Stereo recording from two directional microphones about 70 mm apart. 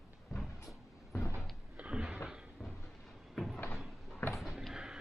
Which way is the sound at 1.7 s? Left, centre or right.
Centre.